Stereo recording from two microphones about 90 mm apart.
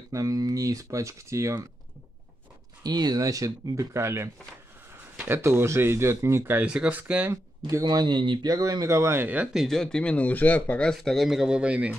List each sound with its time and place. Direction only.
0.1 s speech: 40° right (ahead or behind)
2.8 s speech: 50° right (ahead or behind); by 6.6 s 30° right (ahead or behind)
6.6 s speech: 15° right (ahead or behind)
7.8 s speech: 50° right (ahead or behind); by 9.5 s 20° right (ahead or behind)
9.5 s speech: centre (ahead or behind)